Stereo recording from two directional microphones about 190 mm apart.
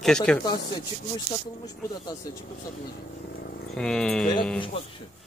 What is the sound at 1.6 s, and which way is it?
Speech, 20° left (ahead or behind).